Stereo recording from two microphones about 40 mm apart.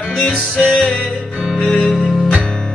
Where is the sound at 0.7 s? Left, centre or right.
Left.